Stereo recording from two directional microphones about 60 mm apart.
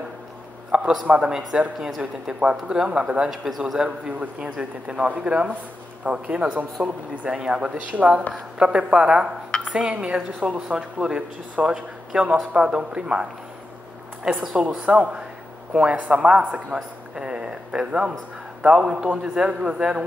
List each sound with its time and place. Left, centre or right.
0.7 s a sound: centre
1.0 s a woman's voice: centre
3.3 s speech: centre
3.8 s a man's voice: centre
14.3 s speech: centre
14.9 s a man's voice: centre
17.1 s a sound: centre
18.6 s a woman's voice: centre